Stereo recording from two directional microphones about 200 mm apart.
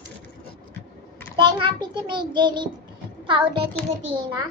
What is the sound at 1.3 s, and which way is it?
Child singing, 25° right (ahead or behind).